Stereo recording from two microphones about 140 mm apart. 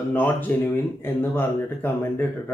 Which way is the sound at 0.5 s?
10° left (ahead or behind).